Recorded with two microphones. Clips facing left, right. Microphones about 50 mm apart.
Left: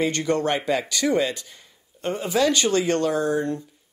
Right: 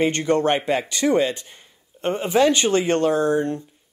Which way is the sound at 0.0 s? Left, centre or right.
Right.